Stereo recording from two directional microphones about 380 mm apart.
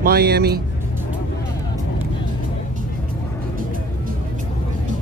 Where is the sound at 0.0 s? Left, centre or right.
Right.